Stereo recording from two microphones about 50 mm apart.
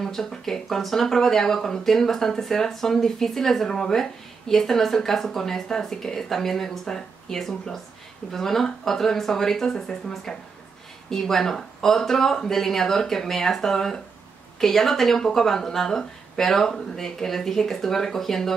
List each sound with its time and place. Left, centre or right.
0.0 s speech: centre